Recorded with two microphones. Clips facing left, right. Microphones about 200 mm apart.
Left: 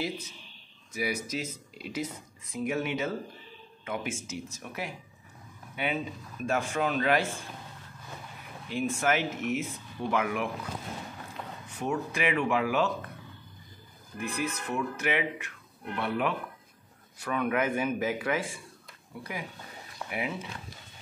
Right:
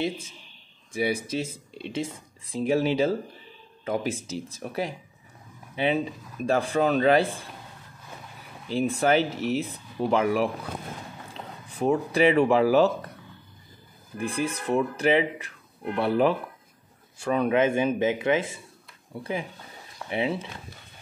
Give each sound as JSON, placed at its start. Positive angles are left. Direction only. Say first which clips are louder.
{"t": 0.9, "sound": "speech", "louder": "right 6 dB", "side_deg": -30}
{"t": 8.6, "sound": "speech", "louder": "right 5 dB", "side_deg": -35}
{"t": 14.1, "sound": "speech", "louder": "right 4 dB", "side_deg": -30}
{"t": 20.1, "sound": "speech", "louder": "right 7 dB", "side_deg": -25}